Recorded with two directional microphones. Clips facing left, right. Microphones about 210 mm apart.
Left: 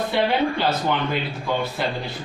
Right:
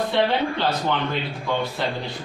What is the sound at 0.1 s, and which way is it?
Speech, 5° left (ahead or behind).